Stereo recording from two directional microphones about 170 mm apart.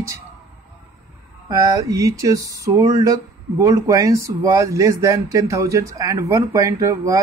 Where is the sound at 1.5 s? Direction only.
20° right (ahead or behind).